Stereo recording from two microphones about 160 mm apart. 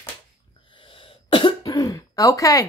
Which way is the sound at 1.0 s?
30° left (ahead or behind).